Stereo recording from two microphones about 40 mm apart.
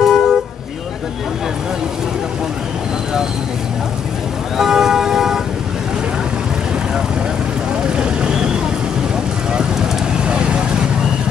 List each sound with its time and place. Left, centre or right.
0.0 s vehicle: centre
4.6 s vehicle: centre
7.8 s vehicle: right
10.2 s vehicle: right